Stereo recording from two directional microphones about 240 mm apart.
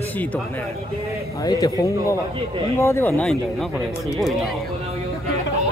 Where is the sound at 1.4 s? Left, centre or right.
Centre.